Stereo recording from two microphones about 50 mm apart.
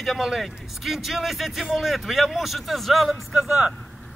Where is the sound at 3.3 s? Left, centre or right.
Centre.